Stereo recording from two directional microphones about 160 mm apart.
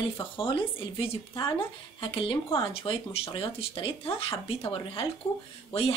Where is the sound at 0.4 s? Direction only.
30° left (ahead or behind).